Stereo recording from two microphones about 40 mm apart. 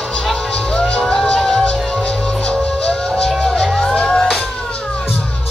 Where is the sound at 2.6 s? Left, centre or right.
Centre.